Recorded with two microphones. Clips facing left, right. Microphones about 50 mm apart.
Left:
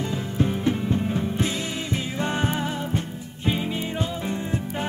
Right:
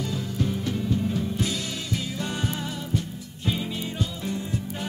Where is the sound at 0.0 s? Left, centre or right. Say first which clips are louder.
Left 3 dB; left.